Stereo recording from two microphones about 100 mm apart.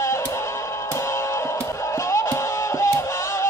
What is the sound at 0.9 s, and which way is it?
Music, 30° left (ahead or behind).